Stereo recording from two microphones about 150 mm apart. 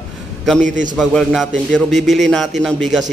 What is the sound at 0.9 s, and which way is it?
A man's voice, centre (ahead or behind).